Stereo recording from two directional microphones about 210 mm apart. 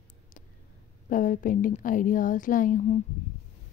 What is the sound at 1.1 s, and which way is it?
Speech, 40° left (ahead or behind).